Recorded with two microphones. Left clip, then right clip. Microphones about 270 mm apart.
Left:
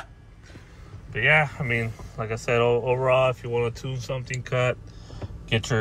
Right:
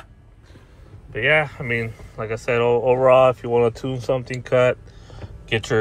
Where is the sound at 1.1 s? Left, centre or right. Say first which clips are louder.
Right 2 dB; centre.